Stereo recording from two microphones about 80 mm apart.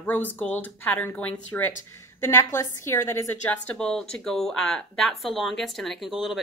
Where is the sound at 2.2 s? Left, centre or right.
Left.